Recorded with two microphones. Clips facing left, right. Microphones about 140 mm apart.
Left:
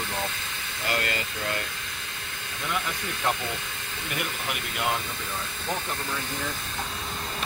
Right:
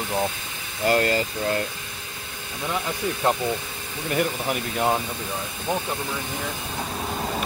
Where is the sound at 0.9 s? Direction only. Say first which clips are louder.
Right 9 dB; 35° right (ahead or behind).